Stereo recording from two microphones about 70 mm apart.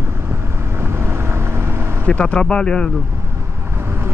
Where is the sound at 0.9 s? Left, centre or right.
Right.